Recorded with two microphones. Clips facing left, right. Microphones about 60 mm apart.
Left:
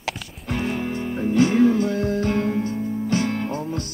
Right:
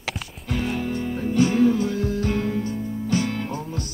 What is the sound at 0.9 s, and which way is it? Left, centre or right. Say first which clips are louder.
Music: left 1 dB; left.